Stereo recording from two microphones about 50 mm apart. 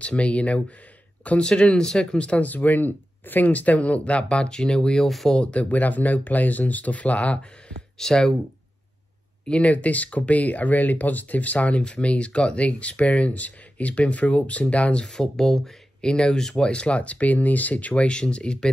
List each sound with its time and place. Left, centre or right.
0.0 s speech: left
5.0 s speech: centre
5.4 s speech: left
8.0 s speech: centre
9.5 s speech: left
15.0 s speech: centre
16.0 s speech: centre